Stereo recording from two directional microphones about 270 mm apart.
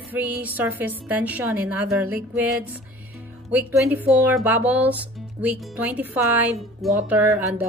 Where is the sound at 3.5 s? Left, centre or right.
Centre.